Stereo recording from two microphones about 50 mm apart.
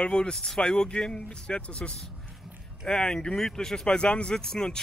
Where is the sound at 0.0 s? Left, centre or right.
Centre.